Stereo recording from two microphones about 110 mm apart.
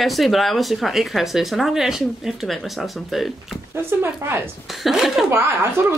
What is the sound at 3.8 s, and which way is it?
Speech, 20° right (ahead or behind).